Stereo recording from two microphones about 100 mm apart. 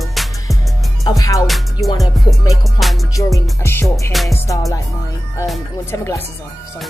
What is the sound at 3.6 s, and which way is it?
Speech, 25° left (ahead or behind).